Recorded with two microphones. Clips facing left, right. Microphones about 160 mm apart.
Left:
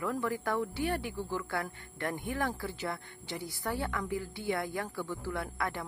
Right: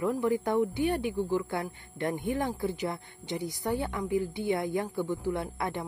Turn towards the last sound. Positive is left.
turn(degrees=-20)  # may be behind; listen again after turning